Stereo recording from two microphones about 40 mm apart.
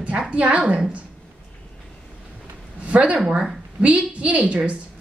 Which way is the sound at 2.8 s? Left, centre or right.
Right.